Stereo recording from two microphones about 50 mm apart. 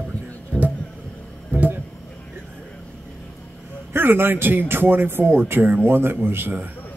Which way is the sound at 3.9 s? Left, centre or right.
Right.